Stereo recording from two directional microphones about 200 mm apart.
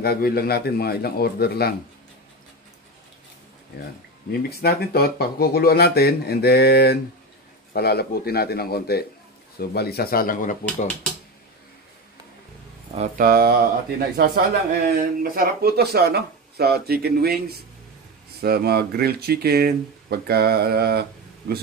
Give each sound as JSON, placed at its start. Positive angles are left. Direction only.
{"t": 0.0, "sound": "speech", "side_deg": 50}
{"t": 4.3, "sound": "speech", "side_deg": 50}
{"t": 13.2, "sound": "speech", "side_deg": -50}
{"t": 18.4, "sound": "speech", "side_deg": -50}